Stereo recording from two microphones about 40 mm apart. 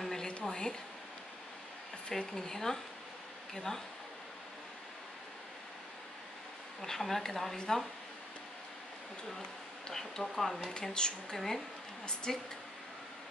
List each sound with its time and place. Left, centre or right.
0.0 s a sound: centre
0.3 s a sound: left
2.3 s speech: centre
6.8 s speech: centre
7.5 s speech: centre
9.4 s speech: centre
11.3 s speech: centre